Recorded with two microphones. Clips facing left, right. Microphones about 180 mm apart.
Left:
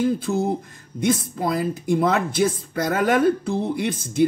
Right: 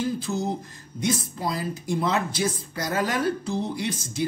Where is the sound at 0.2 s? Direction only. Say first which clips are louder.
Left 5 dB; 55° left (ahead or behind).